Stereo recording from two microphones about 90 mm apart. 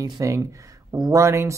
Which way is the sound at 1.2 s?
30° right (ahead or behind).